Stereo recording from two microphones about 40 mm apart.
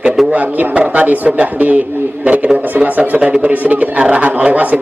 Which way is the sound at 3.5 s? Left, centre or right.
Right.